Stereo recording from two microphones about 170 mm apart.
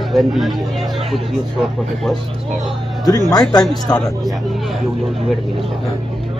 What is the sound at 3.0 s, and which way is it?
Speech, 25° left (ahead or behind).